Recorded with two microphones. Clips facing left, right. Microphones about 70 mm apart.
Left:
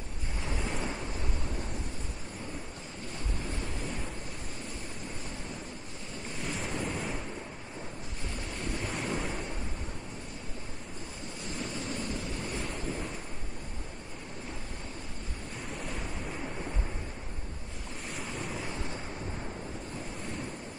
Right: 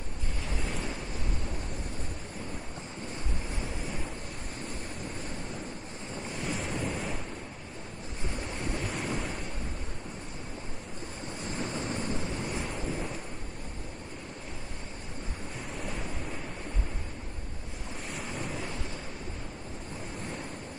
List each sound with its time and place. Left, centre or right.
0.5 s waves: centre
6.4 s waves: centre
8.7 s waves: centre
11.5 s ocean: right
12.0 s waves: right
12.6 s waves: centre
15.7 s waves: centre
18.1 s waves: centre